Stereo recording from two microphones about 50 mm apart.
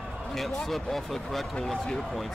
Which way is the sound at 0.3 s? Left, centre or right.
Centre.